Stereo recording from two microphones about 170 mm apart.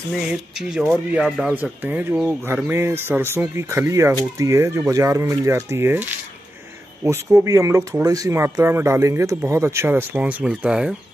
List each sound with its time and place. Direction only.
0.1 s speech: 5° right (ahead or behind)